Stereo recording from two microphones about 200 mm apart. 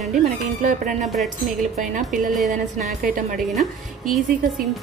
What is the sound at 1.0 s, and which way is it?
Speech, centre (ahead or behind).